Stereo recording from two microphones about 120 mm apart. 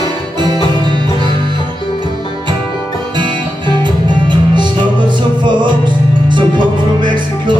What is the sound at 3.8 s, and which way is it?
Music, 40° right (ahead or behind).